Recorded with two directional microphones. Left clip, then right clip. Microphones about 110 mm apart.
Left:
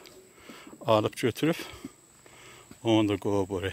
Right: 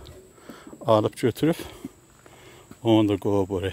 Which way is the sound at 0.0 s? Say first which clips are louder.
Right 4 dB; 10° right (ahead or behind).